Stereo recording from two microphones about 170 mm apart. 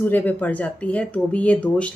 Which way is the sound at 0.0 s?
10° left (ahead or behind).